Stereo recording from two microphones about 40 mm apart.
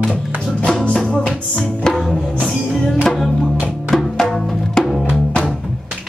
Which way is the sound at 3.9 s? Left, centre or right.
Centre.